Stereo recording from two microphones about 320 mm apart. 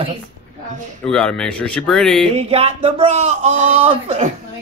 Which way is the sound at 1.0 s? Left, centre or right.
Centre.